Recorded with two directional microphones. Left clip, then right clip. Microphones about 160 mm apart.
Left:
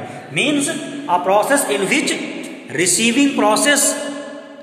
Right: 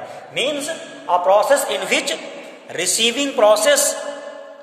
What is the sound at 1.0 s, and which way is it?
A man's voice, 70° right (ahead or behind).